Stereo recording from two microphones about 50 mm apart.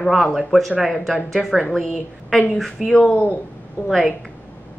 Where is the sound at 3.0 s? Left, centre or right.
Left.